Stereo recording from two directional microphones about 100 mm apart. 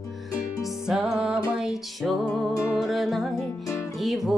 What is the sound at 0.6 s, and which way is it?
Music, 5° right (ahead or behind).